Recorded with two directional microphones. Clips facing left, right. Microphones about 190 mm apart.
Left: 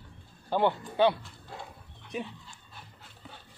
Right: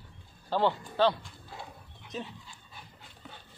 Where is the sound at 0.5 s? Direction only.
15° left (ahead or behind).